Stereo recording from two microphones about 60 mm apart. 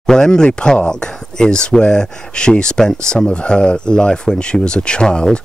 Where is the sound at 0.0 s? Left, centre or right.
Centre.